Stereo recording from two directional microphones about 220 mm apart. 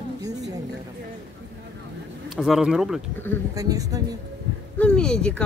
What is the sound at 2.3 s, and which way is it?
Speech, centre (ahead or behind).